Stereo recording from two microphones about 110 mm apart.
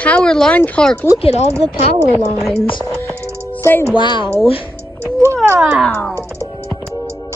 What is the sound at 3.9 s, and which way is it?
Speech, 45° left (ahead or behind).